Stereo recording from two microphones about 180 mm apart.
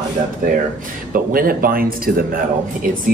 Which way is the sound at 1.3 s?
55° right (ahead or behind).